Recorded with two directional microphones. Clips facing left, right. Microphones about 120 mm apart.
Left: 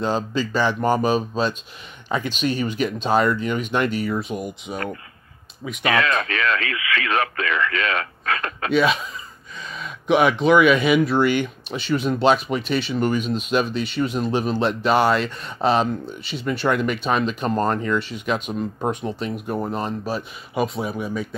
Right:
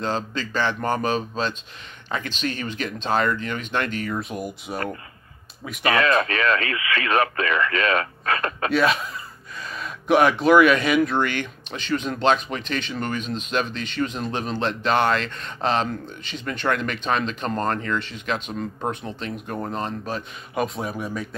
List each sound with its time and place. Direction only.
0.0 s speech: 10° left (ahead or behind)
5.9 s radio: 30° right (ahead or behind)
8.7 s speech: centre (ahead or behind)